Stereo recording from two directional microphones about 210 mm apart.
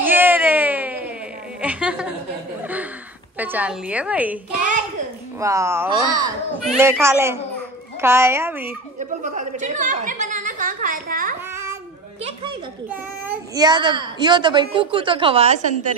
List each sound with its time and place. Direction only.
0.0 s a sound: 10° right (ahead or behind)
3.3 s a woman's voice: 10° right (ahead or behind)
5.4 s a woman's voice: 15° right (ahead or behind)
9.2 s a woman's voice: 35° right (ahead or behind)
13.6 s a woman's voice: 20° right (ahead or behind)